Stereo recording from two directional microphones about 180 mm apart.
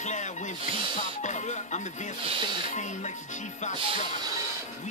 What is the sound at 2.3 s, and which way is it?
Speech, 25° right (ahead or behind).